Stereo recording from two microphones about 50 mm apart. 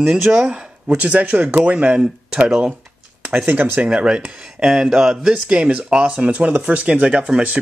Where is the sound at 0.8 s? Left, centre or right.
Right.